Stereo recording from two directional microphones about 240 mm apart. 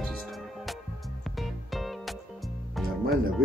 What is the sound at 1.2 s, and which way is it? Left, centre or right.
Music, centre.